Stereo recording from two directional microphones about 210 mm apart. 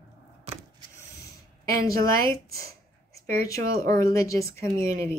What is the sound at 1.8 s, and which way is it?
Speech, 15° left (ahead or behind).